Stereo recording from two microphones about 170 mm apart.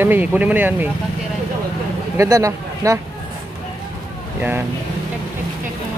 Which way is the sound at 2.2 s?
20° right (ahead or behind).